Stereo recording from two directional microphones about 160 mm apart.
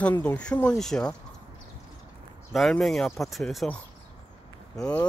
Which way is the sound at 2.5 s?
Centre (ahead or behind).